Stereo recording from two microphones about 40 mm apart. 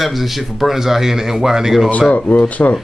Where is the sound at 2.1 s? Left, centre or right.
Left.